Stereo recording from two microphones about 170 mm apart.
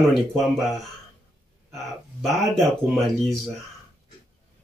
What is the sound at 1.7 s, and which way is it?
Speech, centre (ahead or behind).